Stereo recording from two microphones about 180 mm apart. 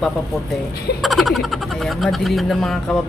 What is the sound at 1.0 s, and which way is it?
Speech, centre (ahead or behind).